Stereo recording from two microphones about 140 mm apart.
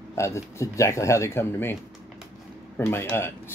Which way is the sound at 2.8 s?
15° left (ahead or behind).